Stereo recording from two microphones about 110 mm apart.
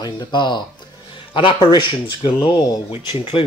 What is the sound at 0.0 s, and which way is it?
Speech, 45° left (ahead or behind).